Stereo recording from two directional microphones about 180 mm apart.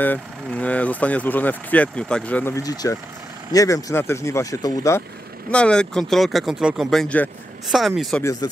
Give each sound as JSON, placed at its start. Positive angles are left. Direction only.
{"t": 0.0, "sound": "speech", "side_deg": 10}
{"t": 5.5, "sound": "speech", "side_deg": 5}
{"t": 8.2, "sound": "speech", "side_deg": 15}